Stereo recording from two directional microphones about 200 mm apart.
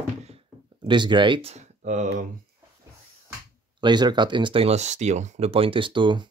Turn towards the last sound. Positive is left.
turn(degrees=-25)  # may be behind; listen again after turning